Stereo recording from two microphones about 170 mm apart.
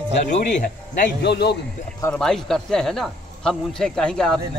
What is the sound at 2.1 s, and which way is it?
Speech, 5° left (ahead or behind).